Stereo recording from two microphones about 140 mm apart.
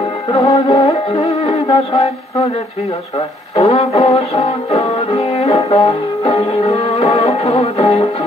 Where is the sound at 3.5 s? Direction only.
45° left (ahead or behind).